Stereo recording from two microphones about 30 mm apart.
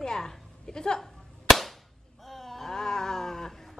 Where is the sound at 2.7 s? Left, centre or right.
Centre.